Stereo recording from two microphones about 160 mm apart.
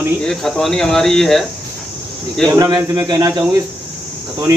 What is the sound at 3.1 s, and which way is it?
Speech, 20° right (ahead or behind).